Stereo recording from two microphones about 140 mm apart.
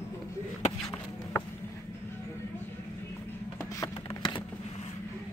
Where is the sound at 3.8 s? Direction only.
30° left (ahead or behind).